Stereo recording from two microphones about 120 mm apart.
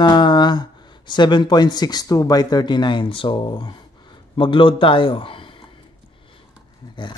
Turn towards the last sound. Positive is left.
turn(degrees=40)  # may be behind; listen again after turning